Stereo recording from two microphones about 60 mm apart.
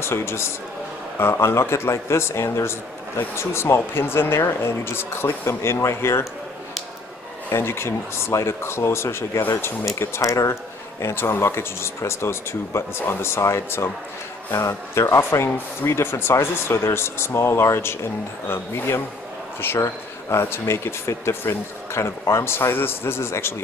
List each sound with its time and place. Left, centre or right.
0.0 s speech: left
7.5 s speech: left
9.9 s speech: left